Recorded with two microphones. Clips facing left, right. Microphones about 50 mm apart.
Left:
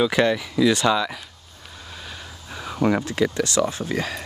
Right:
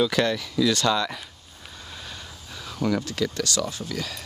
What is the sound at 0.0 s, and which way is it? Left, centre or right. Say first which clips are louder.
Speech: left 3 dB; centre.